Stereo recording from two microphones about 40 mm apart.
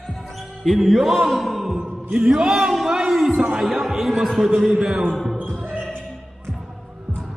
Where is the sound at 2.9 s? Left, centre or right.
Centre.